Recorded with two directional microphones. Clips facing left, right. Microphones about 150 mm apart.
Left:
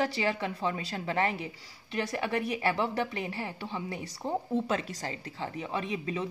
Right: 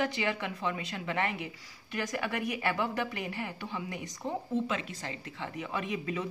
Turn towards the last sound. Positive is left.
turn(degrees=30)  # may be behind; listen again after turning